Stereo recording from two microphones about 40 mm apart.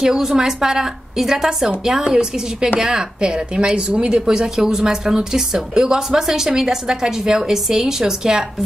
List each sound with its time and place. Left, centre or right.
0.0 s speech: centre
2.0 s a woman's voice: centre